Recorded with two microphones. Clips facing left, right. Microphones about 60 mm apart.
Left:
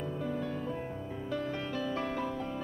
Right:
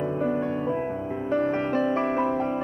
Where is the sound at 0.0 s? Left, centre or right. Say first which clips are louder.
Right 10 dB; right.